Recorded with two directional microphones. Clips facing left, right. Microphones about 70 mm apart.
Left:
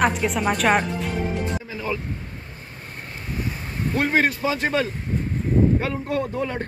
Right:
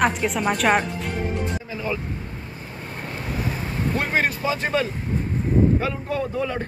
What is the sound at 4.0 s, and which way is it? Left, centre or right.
Speech, left.